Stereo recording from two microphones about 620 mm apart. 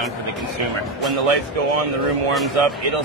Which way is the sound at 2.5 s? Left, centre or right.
Right.